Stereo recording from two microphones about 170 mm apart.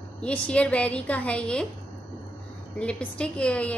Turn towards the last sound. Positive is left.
turn(degrees=5)  # may be behind; listen again after turning